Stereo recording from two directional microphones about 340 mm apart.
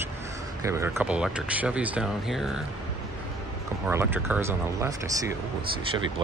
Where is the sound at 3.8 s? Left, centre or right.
Centre.